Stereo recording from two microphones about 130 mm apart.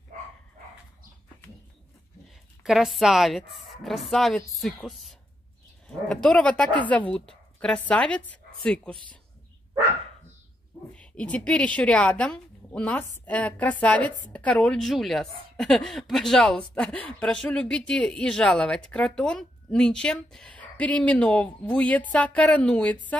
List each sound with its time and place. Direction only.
2.6 s speech: 5° right (ahead or behind)
8.9 s speech: 40° right (ahead or behind)
11.0 s speech: 10° left (ahead or behind)